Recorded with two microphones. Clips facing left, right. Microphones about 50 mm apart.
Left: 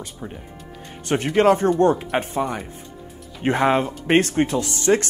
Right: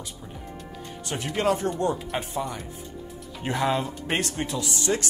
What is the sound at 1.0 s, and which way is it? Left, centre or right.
Speech, left.